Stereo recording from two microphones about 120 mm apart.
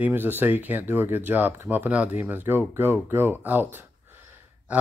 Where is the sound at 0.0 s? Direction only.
15° right (ahead or behind).